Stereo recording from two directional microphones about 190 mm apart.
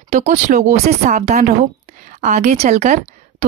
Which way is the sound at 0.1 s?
35° right (ahead or behind).